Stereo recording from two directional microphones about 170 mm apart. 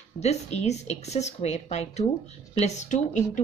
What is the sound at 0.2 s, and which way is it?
Speech, 40° left (ahead or behind).